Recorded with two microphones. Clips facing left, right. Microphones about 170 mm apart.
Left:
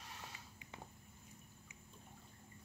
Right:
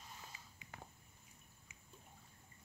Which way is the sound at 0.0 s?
75° left (ahead or behind).